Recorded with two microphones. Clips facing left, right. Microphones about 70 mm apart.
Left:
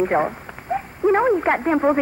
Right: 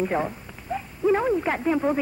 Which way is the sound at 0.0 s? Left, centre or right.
Left.